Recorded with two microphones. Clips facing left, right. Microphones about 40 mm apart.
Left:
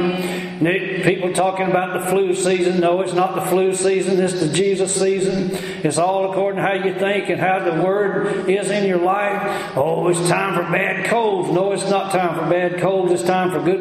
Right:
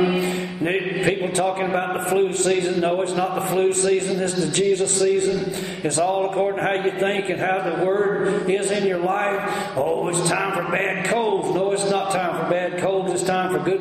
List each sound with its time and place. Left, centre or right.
0.7 s a man's voice: centre